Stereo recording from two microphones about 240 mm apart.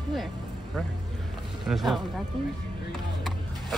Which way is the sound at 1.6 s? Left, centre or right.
Centre.